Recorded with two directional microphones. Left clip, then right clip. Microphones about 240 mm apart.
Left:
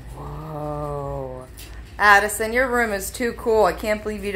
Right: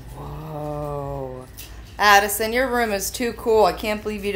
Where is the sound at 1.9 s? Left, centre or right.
Right.